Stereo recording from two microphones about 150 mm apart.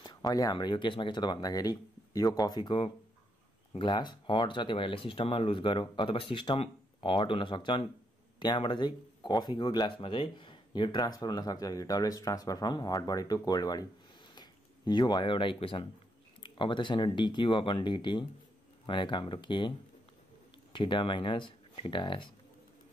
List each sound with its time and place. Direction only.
0.0 s speech: 30° left (ahead or behind)
20.7 s speech: 35° left (ahead or behind)